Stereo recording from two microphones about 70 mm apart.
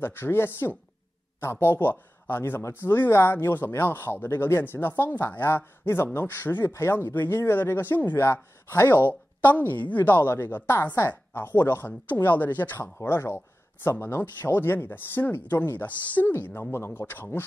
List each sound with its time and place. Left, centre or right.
0.0 s speech: left
8.2 s speech: left